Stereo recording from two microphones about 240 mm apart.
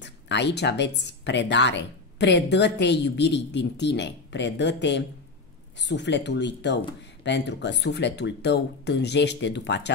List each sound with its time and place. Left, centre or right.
0.0 s speech: left